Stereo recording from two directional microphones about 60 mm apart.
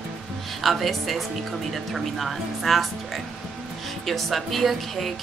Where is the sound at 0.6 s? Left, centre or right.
Centre.